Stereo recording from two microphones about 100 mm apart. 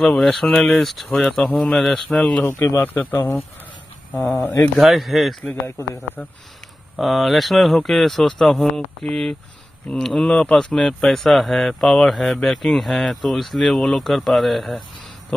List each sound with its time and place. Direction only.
0.0 s speech: 5° left (ahead or behind)
2.4 s speech: 25° left (ahead or behind)
4.7 s speech: centre (ahead or behind)
5.8 s speech: 20° left (ahead or behind)
7.0 s speech: centre (ahead or behind)